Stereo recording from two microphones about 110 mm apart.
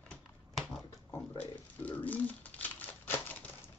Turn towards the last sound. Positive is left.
turn(degrees=15)  # may be behind; listen again after turning